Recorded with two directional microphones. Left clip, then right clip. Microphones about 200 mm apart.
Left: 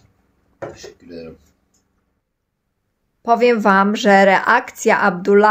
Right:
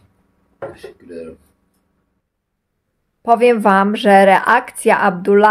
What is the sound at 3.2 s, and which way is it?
A woman's voice, 5° right (ahead or behind).